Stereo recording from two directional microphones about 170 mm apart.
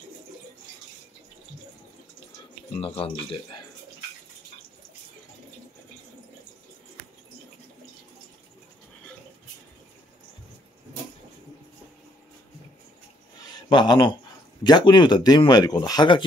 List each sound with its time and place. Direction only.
2.7 s speech: 35° left (ahead or behind)
13.7 s speech: 25° left (ahead or behind)